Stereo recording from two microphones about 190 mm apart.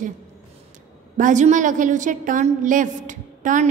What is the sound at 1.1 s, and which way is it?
A woman's voice, 40° right (ahead or behind).